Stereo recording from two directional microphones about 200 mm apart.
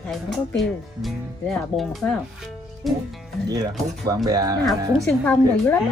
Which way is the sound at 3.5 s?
20° right (ahead or behind).